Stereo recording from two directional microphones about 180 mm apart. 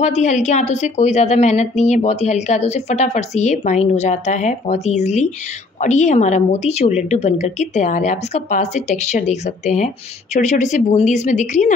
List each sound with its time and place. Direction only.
0.0 s a woman's voice: 40° left (ahead or behind)